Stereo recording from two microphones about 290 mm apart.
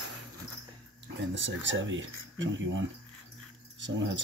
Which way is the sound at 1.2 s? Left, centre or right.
Right.